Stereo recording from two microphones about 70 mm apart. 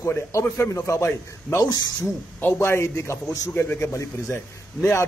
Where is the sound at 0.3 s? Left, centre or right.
Left.